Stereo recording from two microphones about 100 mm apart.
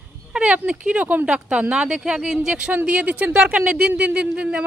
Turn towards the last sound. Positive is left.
turn(degrees=-10)  # may be behind; listen again after turning